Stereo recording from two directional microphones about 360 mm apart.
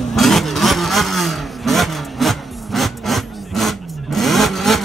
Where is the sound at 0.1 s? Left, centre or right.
Centre.